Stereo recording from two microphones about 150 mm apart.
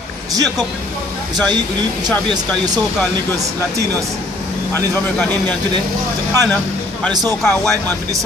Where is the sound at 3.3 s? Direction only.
20° right (ahead or behind).